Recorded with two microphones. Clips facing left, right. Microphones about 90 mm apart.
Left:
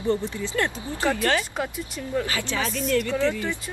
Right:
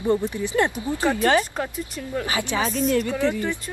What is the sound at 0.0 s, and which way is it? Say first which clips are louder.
Speech: right 3 dB; 15° right (ahead or behind).